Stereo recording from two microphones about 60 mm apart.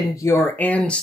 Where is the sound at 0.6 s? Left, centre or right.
Left.